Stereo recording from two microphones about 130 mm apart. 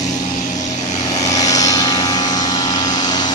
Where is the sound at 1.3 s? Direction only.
25° left (ahead or behind).